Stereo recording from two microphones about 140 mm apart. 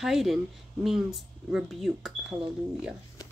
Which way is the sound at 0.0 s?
Centre (ahead or behind).